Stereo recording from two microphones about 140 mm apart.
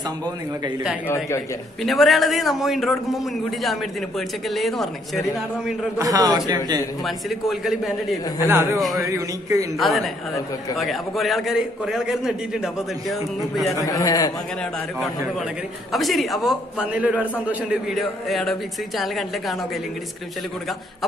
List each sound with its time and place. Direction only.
1.0 s a man's voice: 20° left (ahead or behind)
1.8 s a man's voice: centre (ahead or behind)
5.9 s a man's voice: 25° right (ahead or behind)
7.1 s a man's voice: centre (ahead or behind)
8.5 s a man's voice: 20° right (ahead or behind)
8.7 s a man's voice: centre (ahead or behind)
9.0 s a man's voice: 20° right (ahead or behind)
9.8 s a man's voice: centre (ahead or behind)
13.8 s a man's voice: 25° left (ahead or behind)
14.6 s a man's voice: centre (ahead or behind)
17.9 s a man's voice: centre (ahead or behind)